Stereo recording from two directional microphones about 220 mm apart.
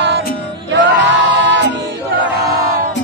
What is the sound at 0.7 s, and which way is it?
Music, 55° right (ahead or behind).